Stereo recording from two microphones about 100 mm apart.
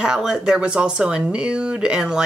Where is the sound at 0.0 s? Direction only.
5° right (ahead or behind).